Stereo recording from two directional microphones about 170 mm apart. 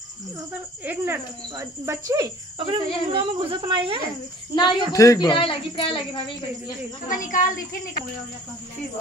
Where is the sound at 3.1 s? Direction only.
35° right (ahead or behind).